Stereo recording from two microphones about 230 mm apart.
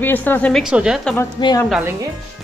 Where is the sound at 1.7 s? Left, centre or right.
Centre.